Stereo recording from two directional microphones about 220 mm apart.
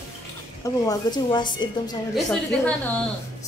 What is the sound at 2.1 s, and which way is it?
Speech, centre (ahead or behind).